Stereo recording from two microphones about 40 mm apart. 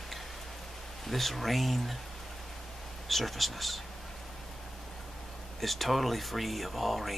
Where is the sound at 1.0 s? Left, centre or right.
Centre.